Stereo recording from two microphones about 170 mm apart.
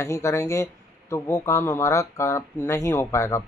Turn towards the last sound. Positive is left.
turn(degrees=15)  # may be behind; listen again after turning